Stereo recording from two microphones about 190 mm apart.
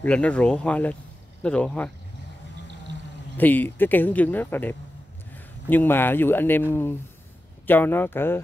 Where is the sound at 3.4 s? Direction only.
10° left (ahead or behind).